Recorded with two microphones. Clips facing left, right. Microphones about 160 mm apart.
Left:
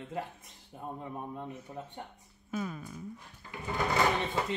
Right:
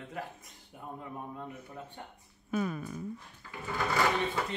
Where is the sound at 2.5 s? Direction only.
65° right (ahead or behind).